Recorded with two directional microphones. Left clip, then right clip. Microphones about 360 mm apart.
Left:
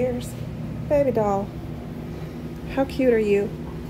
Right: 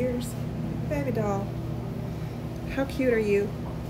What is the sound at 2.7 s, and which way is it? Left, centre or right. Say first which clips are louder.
Speech: left 5 dB; centre.